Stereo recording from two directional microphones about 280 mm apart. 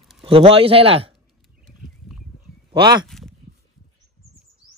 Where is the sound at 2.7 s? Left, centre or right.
Centre.